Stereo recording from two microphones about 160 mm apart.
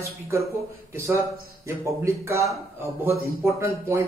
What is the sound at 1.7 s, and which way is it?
A man's voice, 15° right (ahead or behind).